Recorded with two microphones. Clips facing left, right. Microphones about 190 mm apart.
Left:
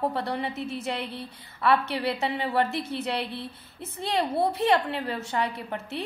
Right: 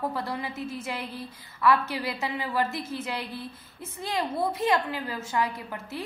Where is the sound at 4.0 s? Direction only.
30° left (ahead or behind).